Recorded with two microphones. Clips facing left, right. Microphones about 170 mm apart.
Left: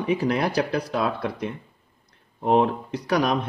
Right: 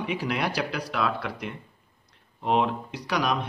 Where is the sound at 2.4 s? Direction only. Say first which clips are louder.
Left 4 dB; 40° left (ahead or behind).